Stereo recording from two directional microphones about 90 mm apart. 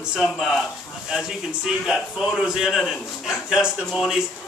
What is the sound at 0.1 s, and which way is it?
Speech, 5° right (ahead or behind).